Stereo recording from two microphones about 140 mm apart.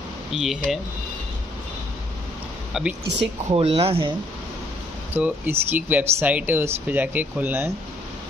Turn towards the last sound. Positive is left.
turn(degrees=-15)  # may be behind; listen again after turning